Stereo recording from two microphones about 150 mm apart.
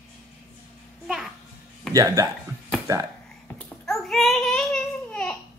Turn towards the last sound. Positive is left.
turn(degrees=5)  # may be behind; listen again after turning